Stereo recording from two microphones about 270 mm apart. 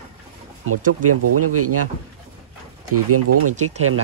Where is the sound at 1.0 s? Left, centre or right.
Right.